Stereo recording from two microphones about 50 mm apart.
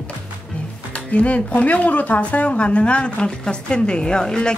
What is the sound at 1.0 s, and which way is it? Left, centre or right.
Speech, left.